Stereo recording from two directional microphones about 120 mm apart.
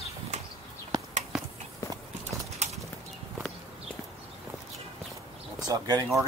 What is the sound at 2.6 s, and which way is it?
Clip-clop, 75° right (ahead or behind).